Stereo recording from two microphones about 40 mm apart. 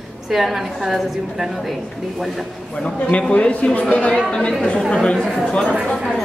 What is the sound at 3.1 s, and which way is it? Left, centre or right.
A man's voice, left.